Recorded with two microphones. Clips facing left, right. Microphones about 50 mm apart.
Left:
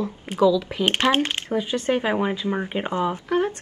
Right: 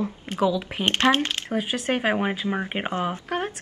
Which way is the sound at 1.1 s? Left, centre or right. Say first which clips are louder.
Left 2 dB; left.